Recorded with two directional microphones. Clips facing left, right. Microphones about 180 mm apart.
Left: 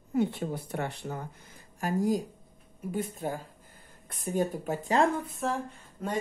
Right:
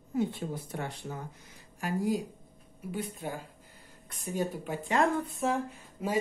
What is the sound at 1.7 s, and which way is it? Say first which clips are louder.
Speech: left 3 dB; 45° left (ahead or behind).